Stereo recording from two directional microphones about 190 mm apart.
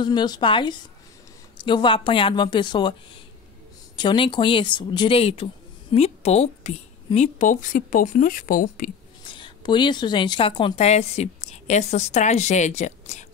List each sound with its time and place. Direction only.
0.0 s speech: 20° left (ahead or behind); by 8.9 s 50° left (ahead or behind)
9.2 s speech: 25° left (ahead or behind)